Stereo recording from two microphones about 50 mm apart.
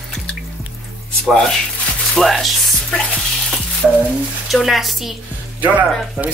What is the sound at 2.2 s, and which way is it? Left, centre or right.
Music, centre.